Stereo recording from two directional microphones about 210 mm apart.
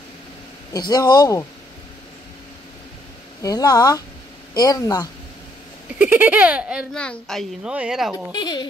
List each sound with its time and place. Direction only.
0.7 s speech: 20° left (ahead or behind)
3.4 s speech: 20° left (ahead or behind)
5.9 s speech: 10° right (ahead or behind)
8.3 s speech: 20° left (ahead or behind)